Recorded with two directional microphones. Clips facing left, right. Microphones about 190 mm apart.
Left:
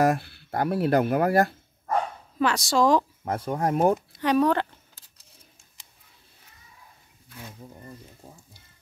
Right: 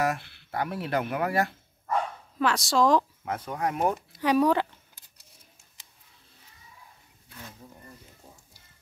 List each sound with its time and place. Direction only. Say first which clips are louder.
0.0 s speech: left 6 dB; 35° left (ahead or behind)
2.3 s a woman's voice: left 2 dB; centre (ahead or behind)
3.3 s speech: left 5 dB; 35° left (ahead or behind)
4.2 s speech: right 1 dB; 5° right (ahead or behind)